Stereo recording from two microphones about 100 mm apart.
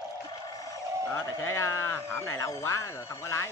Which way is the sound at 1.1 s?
25° left (ahead or behind).